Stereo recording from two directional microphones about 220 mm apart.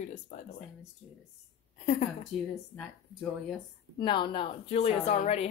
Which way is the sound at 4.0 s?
20° left (ahead or behind).